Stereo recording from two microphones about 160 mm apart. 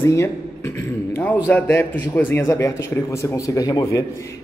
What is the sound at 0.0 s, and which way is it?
A man's voice, 15° left (ahead or behind).